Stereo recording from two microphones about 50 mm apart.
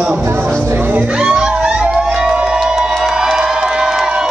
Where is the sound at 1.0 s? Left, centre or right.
Right.